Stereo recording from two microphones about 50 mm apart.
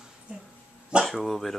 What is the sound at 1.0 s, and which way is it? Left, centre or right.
Speech, centre.